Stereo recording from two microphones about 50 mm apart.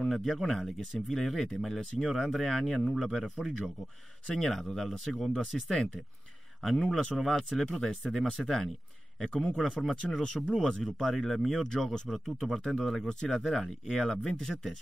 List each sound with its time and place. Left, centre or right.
0.1 s speech: centre